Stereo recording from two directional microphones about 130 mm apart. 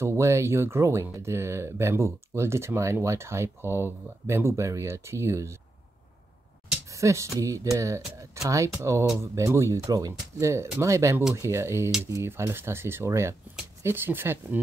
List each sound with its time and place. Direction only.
0.0 s speech: 20° right (ahead or behind)
6.9 s speech: 25° right (ahead or behind)